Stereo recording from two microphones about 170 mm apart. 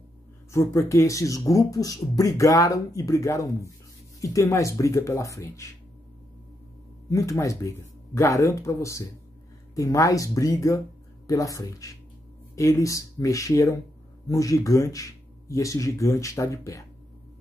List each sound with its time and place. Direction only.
0.5 s speech: 15° left (ahead or behind)
7.1 s speech: 20° left (ahead or behind)